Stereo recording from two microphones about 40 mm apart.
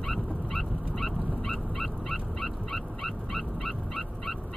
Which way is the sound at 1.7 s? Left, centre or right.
Centre.